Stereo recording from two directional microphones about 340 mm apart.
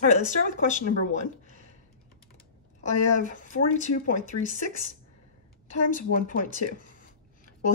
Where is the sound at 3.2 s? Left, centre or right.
Left.